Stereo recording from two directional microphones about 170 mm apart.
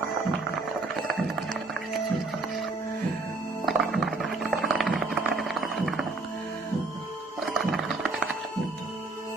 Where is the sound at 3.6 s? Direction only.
Centre (ahead or behind).